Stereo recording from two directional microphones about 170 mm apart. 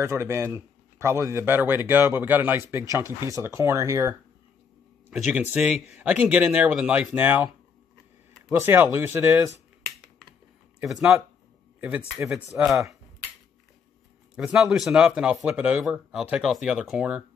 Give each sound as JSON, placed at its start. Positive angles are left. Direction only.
{"t": 0.0, "sound": "speech", "side_deg": -15}
{"t": 5.1, "sound": "speech", "side_deg": -5}
{"t": 10.8, "sound": "speech", "side_deg": -5}
{"t": 14.3, "sound": "speech", "side_deg": -5}